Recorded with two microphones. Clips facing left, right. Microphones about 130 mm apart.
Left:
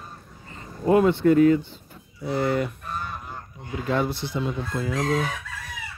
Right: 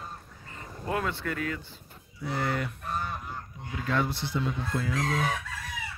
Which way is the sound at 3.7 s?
20° left (ahead or behind).